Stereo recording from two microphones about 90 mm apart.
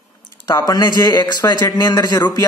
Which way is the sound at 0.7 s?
50° left (ahead or behind).